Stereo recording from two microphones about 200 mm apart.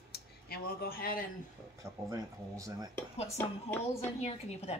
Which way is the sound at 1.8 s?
15° right (ahead or behind).